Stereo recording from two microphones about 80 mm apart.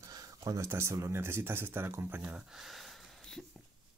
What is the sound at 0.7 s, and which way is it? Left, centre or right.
Speech, right.